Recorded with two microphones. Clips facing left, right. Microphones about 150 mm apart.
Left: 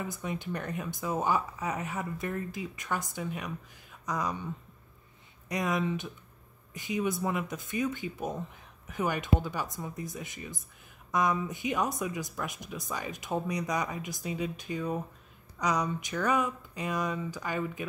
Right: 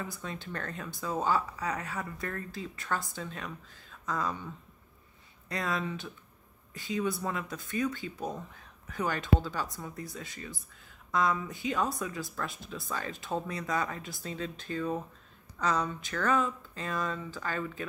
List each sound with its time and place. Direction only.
0.0 s speech: 20° left (ahead or behind)
5.5 s speech: 20° left (ahead or behind)